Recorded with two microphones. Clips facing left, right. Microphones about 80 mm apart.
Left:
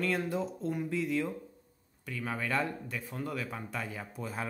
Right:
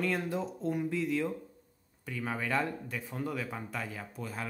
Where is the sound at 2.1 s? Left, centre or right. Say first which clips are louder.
Right 1 dB; centre.